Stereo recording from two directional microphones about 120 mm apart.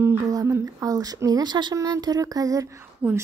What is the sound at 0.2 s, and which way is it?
Speech, 30° right (ahead or behind).